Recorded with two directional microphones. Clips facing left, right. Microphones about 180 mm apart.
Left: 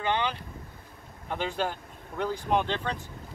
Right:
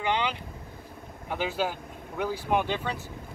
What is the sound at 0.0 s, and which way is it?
Vehicle, 15° right (ahead or behind).